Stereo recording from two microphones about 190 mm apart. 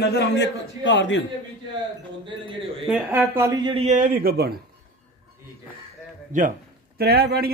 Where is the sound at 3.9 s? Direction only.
50° right (ahead or behind).